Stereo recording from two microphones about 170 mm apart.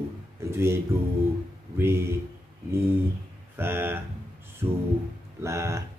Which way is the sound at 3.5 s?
15° right (ahead or behind).